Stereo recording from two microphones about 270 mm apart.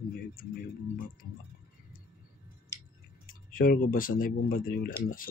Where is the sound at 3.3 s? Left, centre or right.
Left.